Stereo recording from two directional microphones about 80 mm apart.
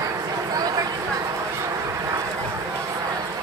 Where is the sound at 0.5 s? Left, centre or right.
Right.